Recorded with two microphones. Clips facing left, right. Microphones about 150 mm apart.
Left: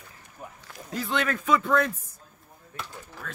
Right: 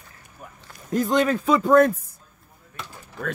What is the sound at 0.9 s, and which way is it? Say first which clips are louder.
Speech: right 8 dB; 40° right (ahead or behind).